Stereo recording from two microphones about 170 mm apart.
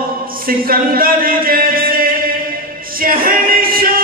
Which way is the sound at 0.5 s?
60° right (ahead or behind).